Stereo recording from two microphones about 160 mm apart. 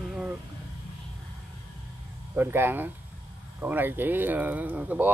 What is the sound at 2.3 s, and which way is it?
Speech, 15° right (ahead or behind).